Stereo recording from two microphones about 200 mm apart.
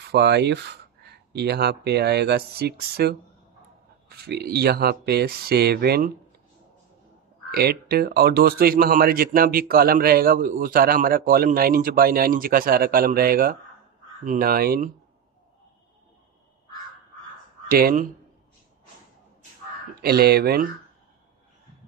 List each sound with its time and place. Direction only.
0.0 s speech: 55° right (ahead or behind)
4.2 s speech: 55° right (ahead or behind)
7.5 s speech: 50° right (ahead or behind)
17.6 s speech: 45° right (ahead or behind)
20.0 s speech: 50° right (ahead or behind)